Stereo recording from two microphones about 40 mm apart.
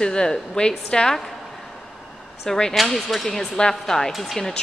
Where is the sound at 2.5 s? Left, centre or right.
Centre.